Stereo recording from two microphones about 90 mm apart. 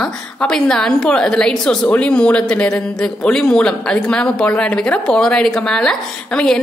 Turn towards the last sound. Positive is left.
turn(degrees=10)  # may be behind; listen again after turning